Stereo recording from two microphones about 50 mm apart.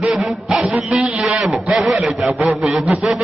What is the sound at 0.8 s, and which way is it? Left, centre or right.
Speech, right.